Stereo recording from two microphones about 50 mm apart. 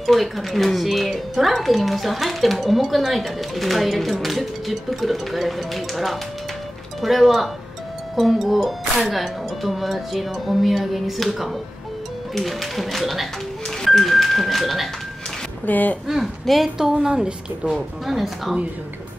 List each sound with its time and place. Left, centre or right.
0.0 s speech: centre
15.6 s speech: left
16.1 s speech: centre